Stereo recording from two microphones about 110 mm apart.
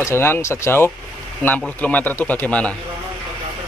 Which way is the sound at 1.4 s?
15° left (ahead or behind).